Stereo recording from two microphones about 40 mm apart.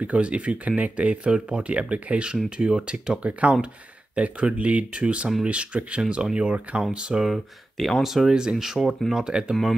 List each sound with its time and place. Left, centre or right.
0.0 s speech: right
7.2 s speech: centre
8.0 s speech: centre
9.3 s speech: right